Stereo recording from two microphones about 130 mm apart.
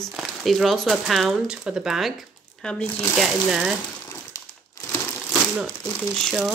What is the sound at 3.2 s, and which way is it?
Speech, 5° right (ahead or behind).